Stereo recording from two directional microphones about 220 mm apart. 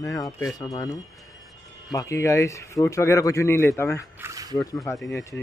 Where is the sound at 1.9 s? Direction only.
15° left (ahead or behind).